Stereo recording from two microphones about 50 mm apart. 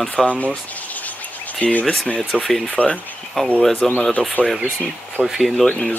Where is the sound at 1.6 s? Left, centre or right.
Left; by 4.0 s centre.